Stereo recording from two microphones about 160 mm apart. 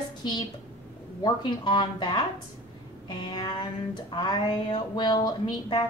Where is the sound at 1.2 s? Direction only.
30° left (ahead or behind).